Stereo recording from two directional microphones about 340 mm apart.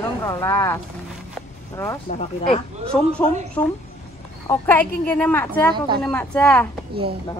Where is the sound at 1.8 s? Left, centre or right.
Centre.